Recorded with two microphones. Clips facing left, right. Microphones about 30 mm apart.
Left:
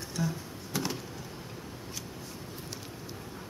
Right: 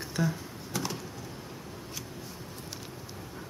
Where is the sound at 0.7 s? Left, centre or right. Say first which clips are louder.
Left 1 dB; centre.